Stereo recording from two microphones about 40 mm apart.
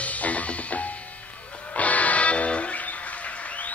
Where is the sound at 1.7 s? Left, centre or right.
Left.